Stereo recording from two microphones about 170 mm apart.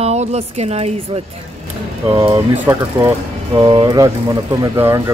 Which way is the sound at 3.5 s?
30° right (ahead or behind).